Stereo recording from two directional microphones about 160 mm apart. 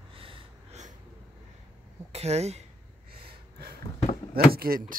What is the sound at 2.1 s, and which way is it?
Speech, 40° right (ahead or behind).